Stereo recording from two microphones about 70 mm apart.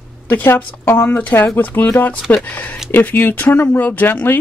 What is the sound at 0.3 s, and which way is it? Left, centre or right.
A woman's voice, left.